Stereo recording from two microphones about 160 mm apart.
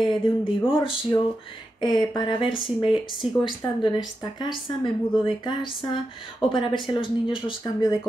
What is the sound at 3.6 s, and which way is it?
Speech, 20° left (ahead or behind).